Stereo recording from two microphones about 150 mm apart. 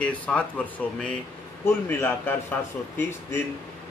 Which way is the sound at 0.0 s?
10° left (ahead or behind).